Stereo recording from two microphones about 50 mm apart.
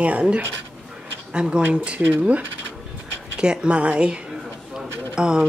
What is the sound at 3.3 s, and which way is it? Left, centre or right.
A woman's voice, centre.